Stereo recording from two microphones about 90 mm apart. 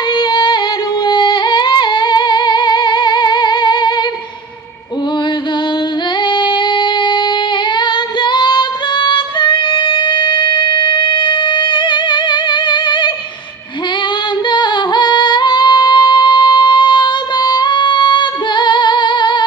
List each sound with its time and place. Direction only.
0.1 s music: 55° left (ahead or behind)
6.2 s female singing: 60° left (ahead or behind)
14.5 s music: 60° left (ahead or behind)